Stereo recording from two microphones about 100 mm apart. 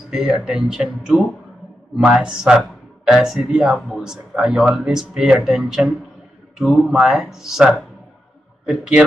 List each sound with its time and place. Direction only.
0.1 s speech: 10° right (ahead or behind)
6.9 s speech: 5° right (ahead or behind)